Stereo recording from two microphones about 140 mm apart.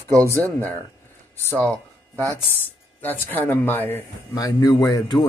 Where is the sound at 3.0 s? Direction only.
15° left (ahead or behind).